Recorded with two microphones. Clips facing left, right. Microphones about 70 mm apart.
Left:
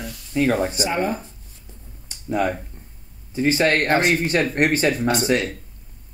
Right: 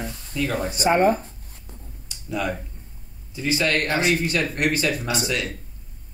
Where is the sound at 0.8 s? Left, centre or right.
Right.